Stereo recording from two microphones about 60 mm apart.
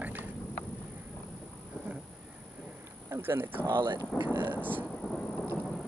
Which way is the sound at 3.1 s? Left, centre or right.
Right.